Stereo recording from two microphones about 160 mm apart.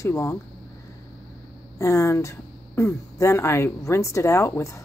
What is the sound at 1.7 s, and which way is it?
Speech, 20° left (ahead or behind).